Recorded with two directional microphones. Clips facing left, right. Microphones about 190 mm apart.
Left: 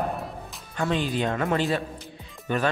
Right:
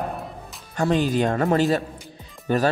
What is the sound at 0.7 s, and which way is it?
Speech, 45° right (ahead or behind).